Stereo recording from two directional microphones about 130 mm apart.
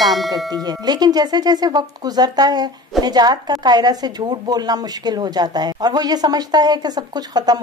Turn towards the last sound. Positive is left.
turn(degrees=-30)  # may be behind; listen again after turning